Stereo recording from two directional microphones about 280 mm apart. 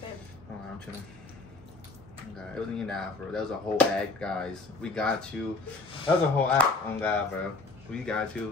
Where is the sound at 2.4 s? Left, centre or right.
Centre.